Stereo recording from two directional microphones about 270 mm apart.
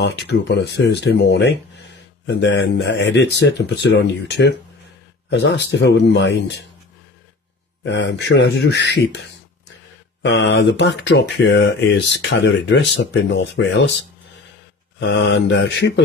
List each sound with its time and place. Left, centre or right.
0.0 s speech: left
7.8 s speech: left
10.2 s speech: left
15.0 s speech: left